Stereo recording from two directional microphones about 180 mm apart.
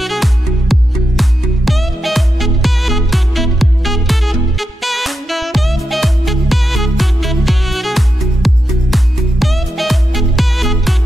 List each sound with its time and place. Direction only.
0.0 s music: centre (ahead or behind)